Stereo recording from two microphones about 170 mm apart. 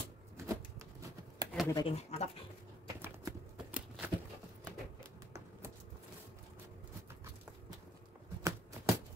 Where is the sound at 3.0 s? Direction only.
10° right (ahead or behind).